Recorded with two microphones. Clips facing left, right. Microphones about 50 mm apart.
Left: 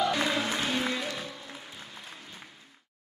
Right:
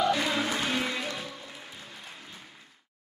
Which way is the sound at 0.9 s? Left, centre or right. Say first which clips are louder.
Even; right.